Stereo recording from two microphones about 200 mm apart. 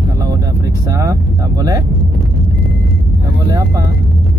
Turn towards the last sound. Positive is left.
turn(degrees=-20)  # may be behind; listen again after turning